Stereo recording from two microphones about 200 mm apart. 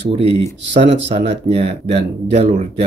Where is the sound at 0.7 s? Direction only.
30° right (ahead or behind).